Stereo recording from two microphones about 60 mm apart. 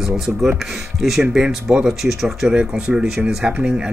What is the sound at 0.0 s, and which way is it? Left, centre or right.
Speech, centre.